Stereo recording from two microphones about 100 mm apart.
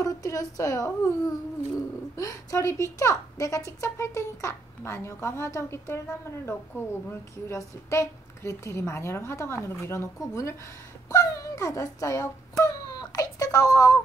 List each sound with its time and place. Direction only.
0.0 s a woman's voice: 35° left (ahead or behind)